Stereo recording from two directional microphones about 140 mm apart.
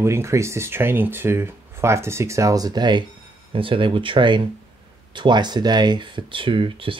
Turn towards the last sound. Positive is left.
turn(degrees=-40)  # may be behind; listen again after turning